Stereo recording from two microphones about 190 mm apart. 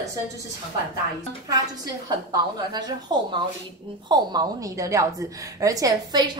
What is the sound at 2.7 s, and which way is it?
A woman's voice, 25° right (ahead or behind).